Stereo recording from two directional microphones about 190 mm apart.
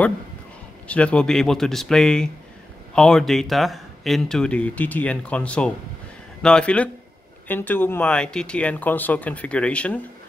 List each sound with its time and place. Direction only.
0.8 s speech: 5° left (ahead or behind)